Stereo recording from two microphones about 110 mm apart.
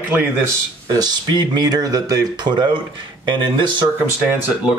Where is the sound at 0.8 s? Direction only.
40° right (ahead or behind).